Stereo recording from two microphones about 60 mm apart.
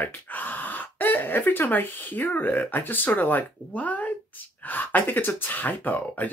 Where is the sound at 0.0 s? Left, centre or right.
Left.